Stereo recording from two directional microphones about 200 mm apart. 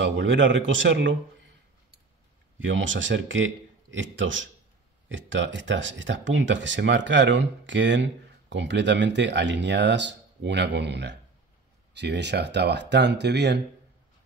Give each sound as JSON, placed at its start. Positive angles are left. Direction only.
{"t": 0.0, "sound": "a man's voice", "side_deg": -70}
{"t": 2.6, "sound": "a man's voice", "side_deg": -70}